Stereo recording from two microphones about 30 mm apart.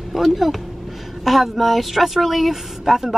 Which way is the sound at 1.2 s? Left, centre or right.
Centre.